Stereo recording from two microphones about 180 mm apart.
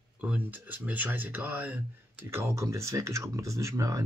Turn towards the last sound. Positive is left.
turn(degrees=-15)  # may be behind; listen again after turning